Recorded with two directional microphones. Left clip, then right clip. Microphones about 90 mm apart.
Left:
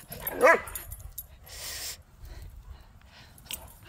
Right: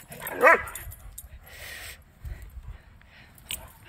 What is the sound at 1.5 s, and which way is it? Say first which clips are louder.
Dog: left 1 dB; 35° left (ahead or behind).